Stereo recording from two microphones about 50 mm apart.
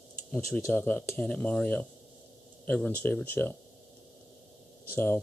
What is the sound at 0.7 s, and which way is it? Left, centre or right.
Speech, left.